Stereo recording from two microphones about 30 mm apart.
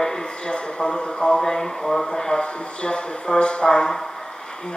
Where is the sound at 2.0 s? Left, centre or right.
Left.